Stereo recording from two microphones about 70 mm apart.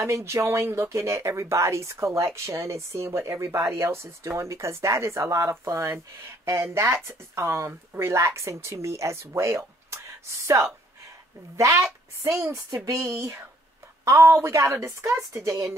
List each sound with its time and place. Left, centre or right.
0.0 s speech: right